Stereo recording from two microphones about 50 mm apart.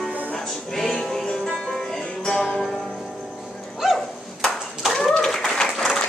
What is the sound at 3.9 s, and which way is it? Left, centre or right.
Clapping, centre.